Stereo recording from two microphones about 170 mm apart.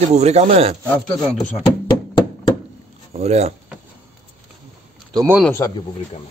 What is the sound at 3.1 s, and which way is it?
Speech, 40° right (ahead or behind).